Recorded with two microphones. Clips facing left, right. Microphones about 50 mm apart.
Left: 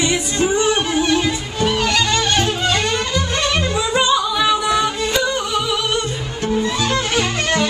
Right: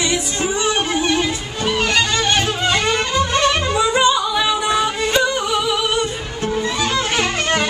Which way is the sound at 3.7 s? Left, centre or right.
Centre.